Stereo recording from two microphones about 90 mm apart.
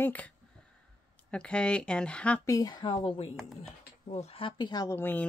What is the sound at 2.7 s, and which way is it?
Speech, 55° left (ahead or behind).